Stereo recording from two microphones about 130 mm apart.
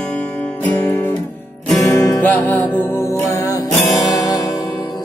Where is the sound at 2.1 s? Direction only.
15° left (ahead or behind).